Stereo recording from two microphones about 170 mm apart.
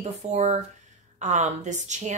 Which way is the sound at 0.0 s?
40° right (ahead or behind).